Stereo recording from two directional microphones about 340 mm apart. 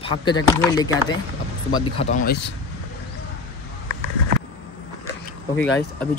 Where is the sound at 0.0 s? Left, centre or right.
Centre.